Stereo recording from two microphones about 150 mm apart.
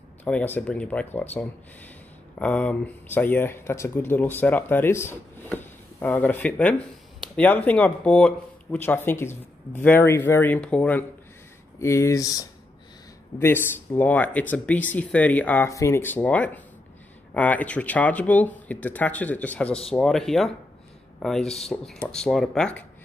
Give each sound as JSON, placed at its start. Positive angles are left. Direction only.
{"t": 0.2, "sound": "speech", "side_deg": 10}
{"t": 11.8, "sound": "speech", "side_deg": 20}